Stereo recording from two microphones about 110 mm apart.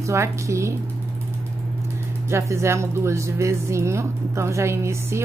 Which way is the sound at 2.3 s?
25° right (ahead or behind).